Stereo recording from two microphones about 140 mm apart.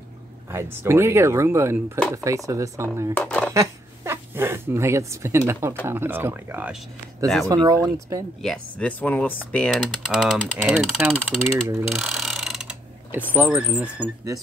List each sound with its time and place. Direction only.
0.5 s speech: 20° right (ahead or behind)
3.2 s speech: 10° left (ahead or behind)
3.5 s speech: 20° right (ahead or behind)
7.4 s speech: 30° right (ahead or behind)
8.4 s speech: 5° left (ahead or behind)
11.9 s a sound: 5° right (ahead or behind)
13.3 s speech: 15° right (ahead or behind)